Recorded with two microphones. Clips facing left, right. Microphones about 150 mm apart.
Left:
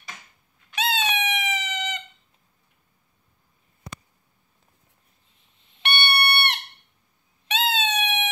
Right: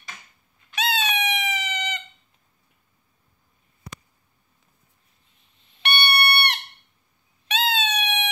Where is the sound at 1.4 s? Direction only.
15° left (ahead or behind).